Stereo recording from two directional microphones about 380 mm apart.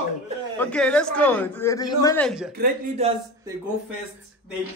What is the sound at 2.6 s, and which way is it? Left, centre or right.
Speech, centre.